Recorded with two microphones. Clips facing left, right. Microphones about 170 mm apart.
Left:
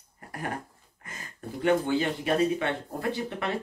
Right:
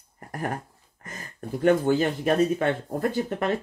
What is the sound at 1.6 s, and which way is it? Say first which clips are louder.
Speech: right 4 dB; 45° right (ahead or behind).